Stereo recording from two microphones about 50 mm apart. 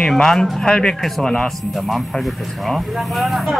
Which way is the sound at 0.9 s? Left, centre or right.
Centre.